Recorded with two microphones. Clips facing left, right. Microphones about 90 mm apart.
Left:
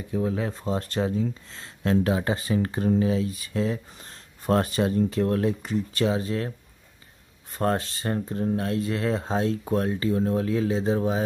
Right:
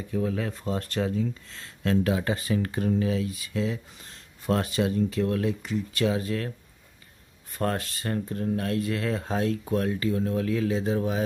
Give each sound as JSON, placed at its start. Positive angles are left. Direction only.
{"t": 0.1, "sound": "speech", "side_deg": 25}
{"t": 7.5, "sound": "speech", "side_deg": 25}